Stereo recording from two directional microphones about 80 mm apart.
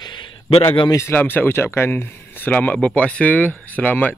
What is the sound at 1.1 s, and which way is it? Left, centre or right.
Speech, left.